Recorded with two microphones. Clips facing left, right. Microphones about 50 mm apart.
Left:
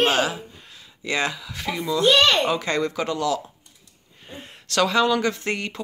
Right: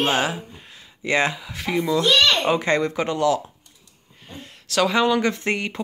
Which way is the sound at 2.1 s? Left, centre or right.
Centre.